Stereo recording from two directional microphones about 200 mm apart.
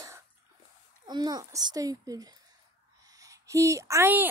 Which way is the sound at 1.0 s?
20° right (ahead or behind).